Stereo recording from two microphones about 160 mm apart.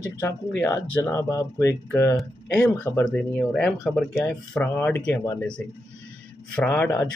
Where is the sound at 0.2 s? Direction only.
10° left (ahead or behind).